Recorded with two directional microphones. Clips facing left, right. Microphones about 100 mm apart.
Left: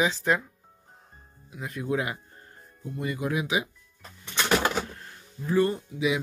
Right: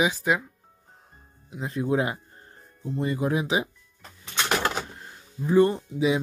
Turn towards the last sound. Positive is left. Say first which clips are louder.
# right 3 dB
turn(degrees=-30)  # may be behind; listen again after turning